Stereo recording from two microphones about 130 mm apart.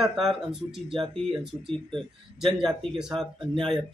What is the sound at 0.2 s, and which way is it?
Speech, 5° right (ahead or behind).